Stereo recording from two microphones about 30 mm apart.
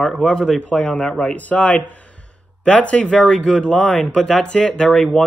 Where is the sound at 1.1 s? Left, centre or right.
Left.